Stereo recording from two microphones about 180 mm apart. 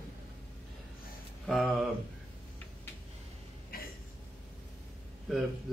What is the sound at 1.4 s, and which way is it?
Speech, centre (ahead or behind).